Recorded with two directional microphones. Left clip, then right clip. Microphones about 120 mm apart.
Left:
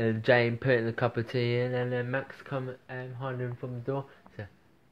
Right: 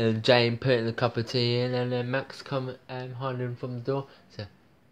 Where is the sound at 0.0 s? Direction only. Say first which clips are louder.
Right 2 dB; 25° right (ahead or behind).